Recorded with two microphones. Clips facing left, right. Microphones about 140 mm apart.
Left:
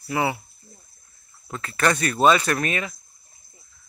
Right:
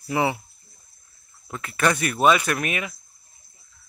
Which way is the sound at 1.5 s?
10° right (ahead or behind).